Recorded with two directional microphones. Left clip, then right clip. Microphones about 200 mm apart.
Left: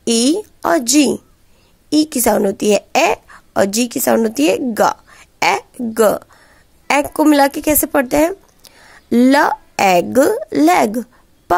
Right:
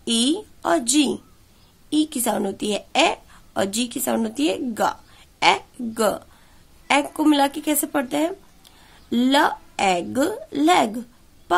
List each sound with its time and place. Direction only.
0.0 s a woman's voice: 40° left (ahead or behind)